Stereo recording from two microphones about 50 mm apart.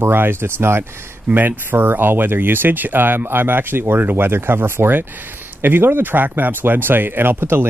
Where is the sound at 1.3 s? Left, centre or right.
Right.